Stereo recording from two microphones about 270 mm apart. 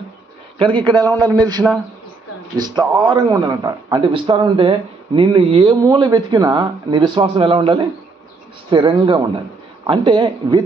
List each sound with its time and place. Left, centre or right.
0.6 s a man's voice: centre